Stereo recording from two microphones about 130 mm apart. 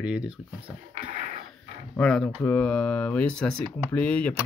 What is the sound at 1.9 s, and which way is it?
Speech, 5° left (ahead or behind).